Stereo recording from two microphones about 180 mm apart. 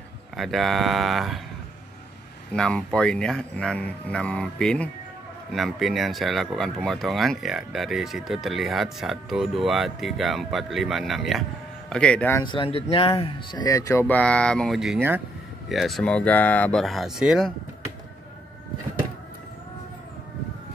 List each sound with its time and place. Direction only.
0.4 s speech: centre (ahead or behind)
2.5 s speech: 5° left (ahead or behind)
12.4 s speech: 30° left (ahead or behind); by 15.0 s centre (ahead or behind)
15.0 s speech: 10° right (ahead or behind)
15.7 s speech: centre (ahead or behind)